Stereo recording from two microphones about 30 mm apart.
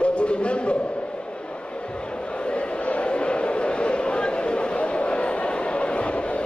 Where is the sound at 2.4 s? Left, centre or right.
Left.